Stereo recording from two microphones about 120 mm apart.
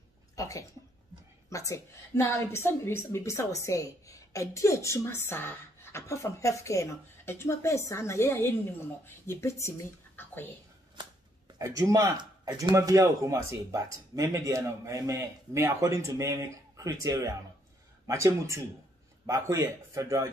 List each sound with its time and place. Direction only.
0.4 s a sound: 25° left (ahead or behind)
1.5 s a woman's voice: 25° left (ahead or behind)
11.5 s speech: 30° right (ahead or behind)
12.7 s speech: 25° right (ahead or behind)